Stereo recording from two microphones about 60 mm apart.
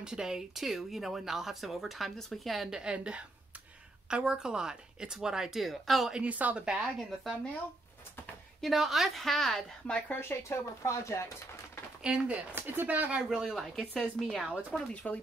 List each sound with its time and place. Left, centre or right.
0.0 s speech: centre
2.8 s speech: centre
6.1 s speech: right
6.6 s speech: centre
8.5 s speech: centre
9.8 s speech: centre
10.1 s speech: left
12.0 s speech: centre
12.5 s speech: right
13.3 s speech: centre
13.7 s speech: centre